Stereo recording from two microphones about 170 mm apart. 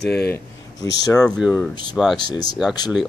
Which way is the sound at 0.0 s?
75° left (ahead or behind).